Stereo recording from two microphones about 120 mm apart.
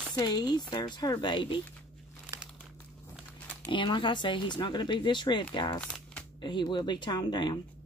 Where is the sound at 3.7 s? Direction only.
40° left (ahead or behind).